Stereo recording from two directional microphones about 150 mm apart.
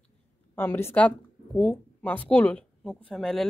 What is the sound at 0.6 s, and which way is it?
A woman's voice, 15° left (ahead or behind).